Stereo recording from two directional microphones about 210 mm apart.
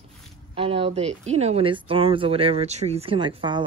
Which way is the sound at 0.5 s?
25° right (ahead or behind).